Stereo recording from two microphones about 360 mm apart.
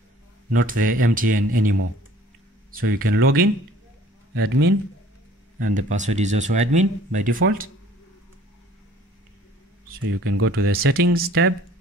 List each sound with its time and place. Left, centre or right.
0.5 s speech: right
5.8 s speech: centre
10.1 s speech: right